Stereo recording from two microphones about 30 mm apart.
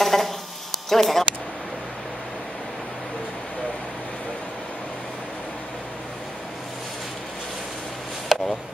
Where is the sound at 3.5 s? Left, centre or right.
Left.